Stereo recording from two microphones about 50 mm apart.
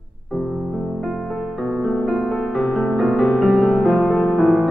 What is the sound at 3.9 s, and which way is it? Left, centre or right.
Music, centre.